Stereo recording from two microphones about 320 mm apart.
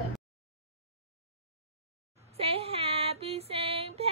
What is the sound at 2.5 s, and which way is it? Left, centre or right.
Music, centre.